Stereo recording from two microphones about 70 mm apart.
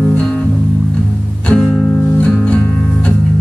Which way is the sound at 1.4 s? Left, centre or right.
Centre.